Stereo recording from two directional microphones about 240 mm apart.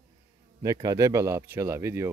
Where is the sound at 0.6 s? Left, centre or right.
Centre.